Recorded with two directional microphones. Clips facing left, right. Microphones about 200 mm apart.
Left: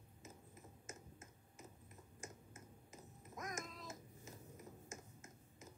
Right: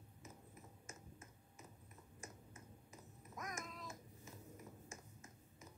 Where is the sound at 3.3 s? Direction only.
20° left (ahead or behind).